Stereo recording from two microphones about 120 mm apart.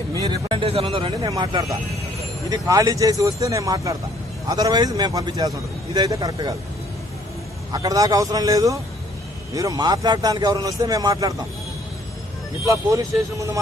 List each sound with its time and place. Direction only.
0.1 s speech: 35° right (ahead or behind)
1.3 s a man's voice: 35° right (ahead or behind)
7.7 s a man's voice: 30° right (ahead or behind)
12.6 s speech: 25° right (ahead or behind)